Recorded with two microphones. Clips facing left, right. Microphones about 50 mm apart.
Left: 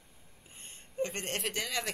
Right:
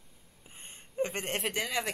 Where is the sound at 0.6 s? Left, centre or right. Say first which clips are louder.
Right 2 dB; right.